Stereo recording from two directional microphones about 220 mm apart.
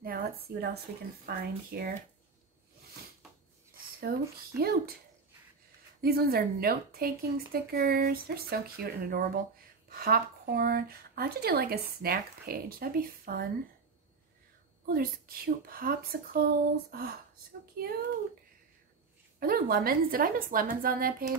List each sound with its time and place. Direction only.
0.0 s speech: 40° right (ahead or behind)
4.1 s speech: 40° right (ahead or behind)
5.9 s speech: 45° right (ahead or behind)
14.9 s speech: 40° right (ahead or behind)
19.4 s a woman's voice: 40° right (ahead or behind)